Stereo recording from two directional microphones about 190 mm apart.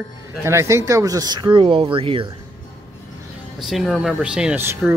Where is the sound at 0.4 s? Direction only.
15° right (ahead or behind).